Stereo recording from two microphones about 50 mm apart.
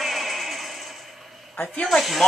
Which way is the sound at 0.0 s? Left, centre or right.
Centre.